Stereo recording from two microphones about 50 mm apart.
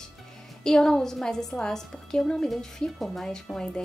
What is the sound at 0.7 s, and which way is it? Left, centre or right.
A woman's voice, centre.